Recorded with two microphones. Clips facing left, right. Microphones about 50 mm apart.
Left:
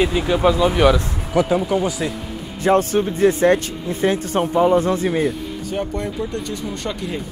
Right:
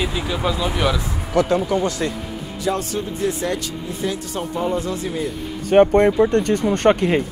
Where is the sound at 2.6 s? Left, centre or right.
Left.